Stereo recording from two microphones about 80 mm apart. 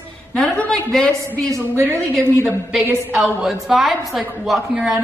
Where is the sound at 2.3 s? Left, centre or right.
Left.